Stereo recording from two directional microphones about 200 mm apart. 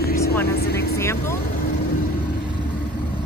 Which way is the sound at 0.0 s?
50° left (ahead or behind).